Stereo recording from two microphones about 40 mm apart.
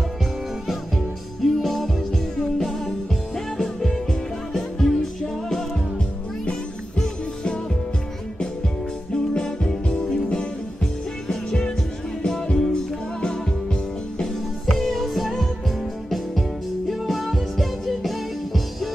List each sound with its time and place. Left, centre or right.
0.7 s music: centre
3.5 s music: centre
9.1 s music: centre
14.2 s music: centre
16.9 s music: centre